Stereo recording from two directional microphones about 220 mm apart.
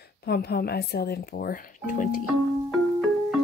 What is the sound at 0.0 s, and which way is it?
Speech, 45° left (ahead or behind).